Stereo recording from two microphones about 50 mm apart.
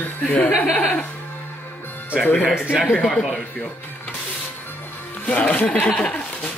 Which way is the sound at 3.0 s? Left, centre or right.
Centre.